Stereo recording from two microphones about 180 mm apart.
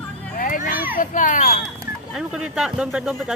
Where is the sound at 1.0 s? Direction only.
45° left (ahead or behind).